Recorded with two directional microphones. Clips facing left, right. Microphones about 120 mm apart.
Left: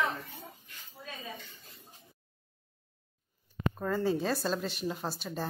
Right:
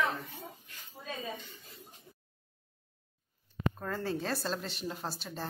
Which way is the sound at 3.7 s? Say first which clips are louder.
Left 5 dB; 5° left (ahead or behind).